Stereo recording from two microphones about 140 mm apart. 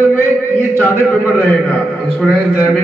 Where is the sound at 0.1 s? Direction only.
15° left (ahead or behind).